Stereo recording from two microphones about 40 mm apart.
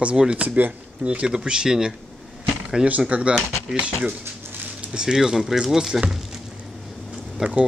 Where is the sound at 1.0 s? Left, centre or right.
Right.